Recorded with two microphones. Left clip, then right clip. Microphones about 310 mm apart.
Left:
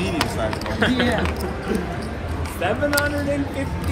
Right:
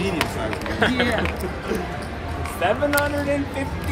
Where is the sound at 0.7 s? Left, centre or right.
Right.